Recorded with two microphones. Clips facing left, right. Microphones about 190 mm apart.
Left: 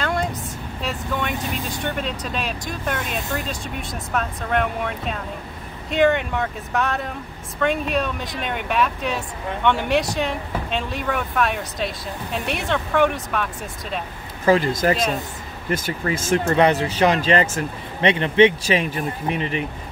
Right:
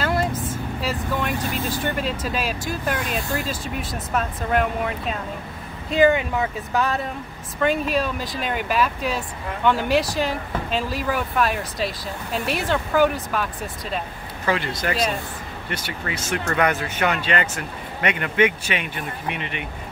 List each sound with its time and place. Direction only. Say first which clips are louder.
0.0 s vehicle: right 1 dB; 5° right (ahead or behind)
1.5 s speech: right 2 dB; centre (ahead or behind)
14.4 s speech: left 7 dB; 40° left (ahead or behind)
16.0 s speech: left 6 dB; 40° left (ahead or behind)
16.4 s speech: left 3 dB; 30° left (ahead or behind)